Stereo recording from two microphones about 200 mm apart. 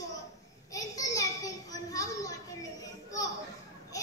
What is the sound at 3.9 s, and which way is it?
Children playing, 15° left (ahead or behind).